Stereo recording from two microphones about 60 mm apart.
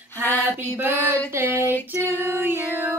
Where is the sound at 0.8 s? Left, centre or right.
Right.